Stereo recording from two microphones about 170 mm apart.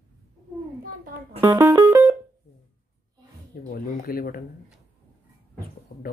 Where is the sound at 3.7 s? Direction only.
60° left (ahead or behind).